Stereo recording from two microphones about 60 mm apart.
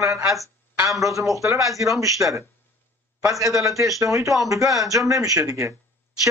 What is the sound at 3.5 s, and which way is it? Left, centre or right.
A man's voice, right.